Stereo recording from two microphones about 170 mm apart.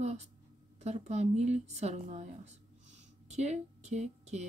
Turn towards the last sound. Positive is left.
turn(degrees=-40)  # may be behind; listen again after turning